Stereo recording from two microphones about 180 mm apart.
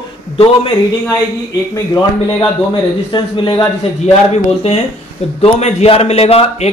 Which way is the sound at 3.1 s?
25° left (ahead or behind).